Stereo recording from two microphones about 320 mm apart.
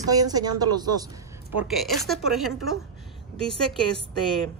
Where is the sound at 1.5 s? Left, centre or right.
Centre.